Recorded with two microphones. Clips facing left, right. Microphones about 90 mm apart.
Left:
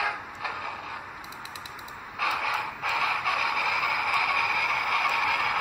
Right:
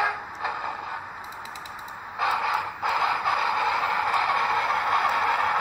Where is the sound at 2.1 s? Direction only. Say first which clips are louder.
Right 4 dB; 25° right (ahead or behind).